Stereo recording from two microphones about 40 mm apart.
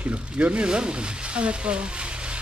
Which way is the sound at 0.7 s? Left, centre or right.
Right.